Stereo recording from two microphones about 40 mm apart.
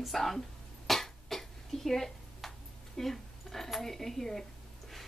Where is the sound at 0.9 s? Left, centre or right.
Centre.